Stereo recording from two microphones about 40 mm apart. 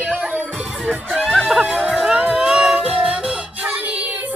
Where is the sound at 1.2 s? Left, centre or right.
Centre.